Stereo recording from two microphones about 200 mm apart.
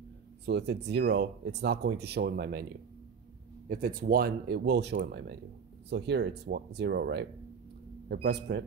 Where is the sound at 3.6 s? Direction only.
45° right (ahead or behind).